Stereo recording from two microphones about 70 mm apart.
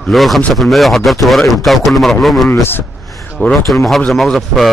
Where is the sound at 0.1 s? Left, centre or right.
Centre.